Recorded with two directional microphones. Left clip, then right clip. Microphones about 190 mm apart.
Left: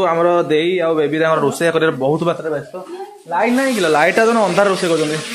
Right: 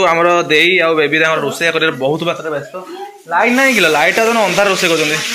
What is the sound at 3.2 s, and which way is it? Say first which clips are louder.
Speech: right 5 dB; 10° left (ahead or behind).